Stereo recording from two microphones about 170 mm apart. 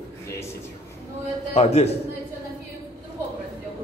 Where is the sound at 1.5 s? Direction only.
40° left (ahead or behind).